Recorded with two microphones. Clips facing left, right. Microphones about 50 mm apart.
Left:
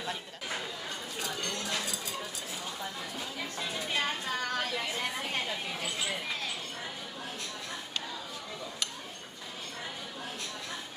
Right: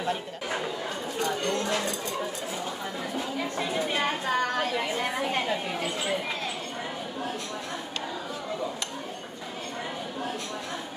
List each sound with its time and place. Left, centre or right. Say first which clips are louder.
1.4 s dishes: right 8 dB; centre
3.2 s a woman's voice: right 9 dB; right